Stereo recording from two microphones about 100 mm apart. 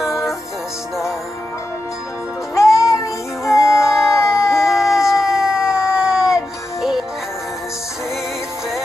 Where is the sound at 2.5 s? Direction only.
30° left (ahead or behind).